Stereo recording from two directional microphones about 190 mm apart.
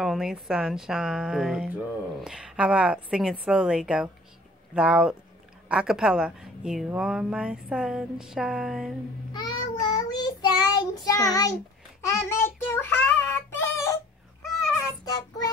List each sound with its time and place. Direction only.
0.0 s a woman's voice: centre (ahead or behind)
9.3 s child singing: 20° left (ahead or behind)
15.0 s child singing: 20° left (ahead or behind)